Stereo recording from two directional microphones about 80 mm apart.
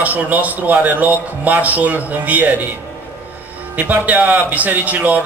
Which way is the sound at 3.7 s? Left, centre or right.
Right.